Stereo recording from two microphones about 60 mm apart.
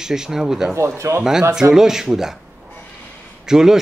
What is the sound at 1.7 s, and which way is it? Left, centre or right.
Speech, centre.